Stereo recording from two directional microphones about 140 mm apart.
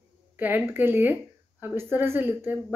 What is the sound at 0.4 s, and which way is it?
Speech, 15° right (ahead or behind).